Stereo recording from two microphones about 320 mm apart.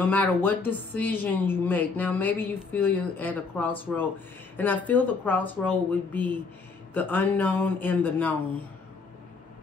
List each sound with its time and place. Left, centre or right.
0.0 s a woman's voice: centre